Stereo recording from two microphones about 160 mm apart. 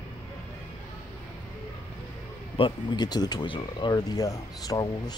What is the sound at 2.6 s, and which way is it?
Speech, 30° left (ahead or behind).